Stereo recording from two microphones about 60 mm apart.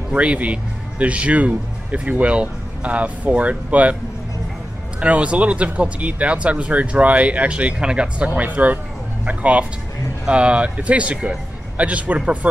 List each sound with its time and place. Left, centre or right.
0.1 s speech: centre
5.0 s a man's voice: right